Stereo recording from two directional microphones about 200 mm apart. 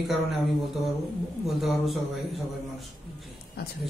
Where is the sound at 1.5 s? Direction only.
Centre (ahead or behind).